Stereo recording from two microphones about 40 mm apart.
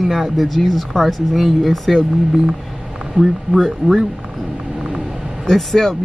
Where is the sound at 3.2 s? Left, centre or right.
Right.